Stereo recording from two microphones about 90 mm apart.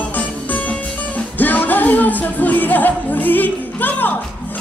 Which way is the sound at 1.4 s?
20° left (ahead or behind).